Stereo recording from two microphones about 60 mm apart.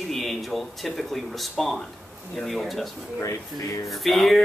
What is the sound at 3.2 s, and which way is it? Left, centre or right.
Speech, left.